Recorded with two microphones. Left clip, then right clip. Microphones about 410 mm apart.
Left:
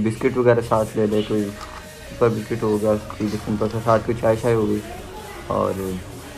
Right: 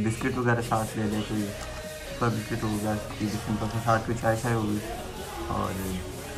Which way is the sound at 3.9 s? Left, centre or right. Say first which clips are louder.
Left 7 dB; centre.